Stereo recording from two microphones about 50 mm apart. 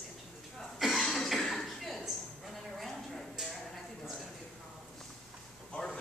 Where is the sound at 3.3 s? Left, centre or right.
Centre.